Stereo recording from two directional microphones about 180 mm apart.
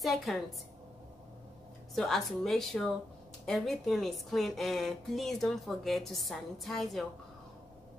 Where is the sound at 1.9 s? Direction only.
Centre (ahead or behind).